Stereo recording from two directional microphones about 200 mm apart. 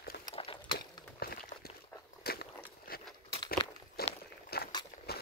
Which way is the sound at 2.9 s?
45° left (ahead or behind).